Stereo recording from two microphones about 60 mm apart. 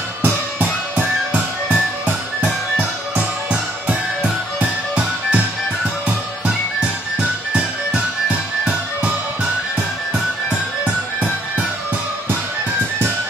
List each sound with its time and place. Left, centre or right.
0.2 s music: right
4.6 s music: centre